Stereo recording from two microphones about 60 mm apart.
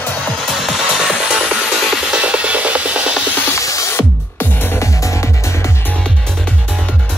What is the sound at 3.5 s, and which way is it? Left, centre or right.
Music, left.